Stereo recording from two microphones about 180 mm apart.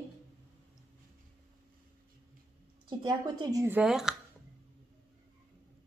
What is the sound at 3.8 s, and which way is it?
Speech, 5° right (ahead or behind).